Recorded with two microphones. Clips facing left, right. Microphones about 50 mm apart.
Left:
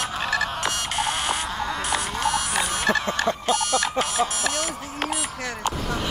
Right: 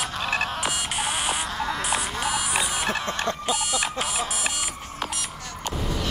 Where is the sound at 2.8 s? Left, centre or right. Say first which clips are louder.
Left 4 dB; left.